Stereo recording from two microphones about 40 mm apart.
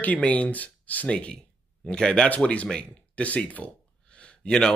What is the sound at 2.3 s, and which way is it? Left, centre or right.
Speech, left.